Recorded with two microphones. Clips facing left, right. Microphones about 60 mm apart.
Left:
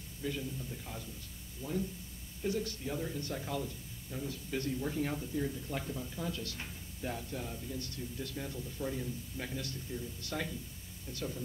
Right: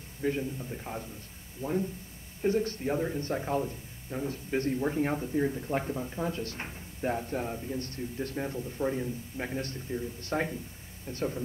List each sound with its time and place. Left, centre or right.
0.2 s speech: right